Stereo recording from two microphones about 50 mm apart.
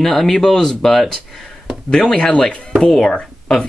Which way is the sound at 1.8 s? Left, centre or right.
Centre.